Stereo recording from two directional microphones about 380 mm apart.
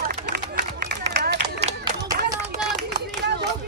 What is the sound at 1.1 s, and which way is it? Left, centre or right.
Clapping, right.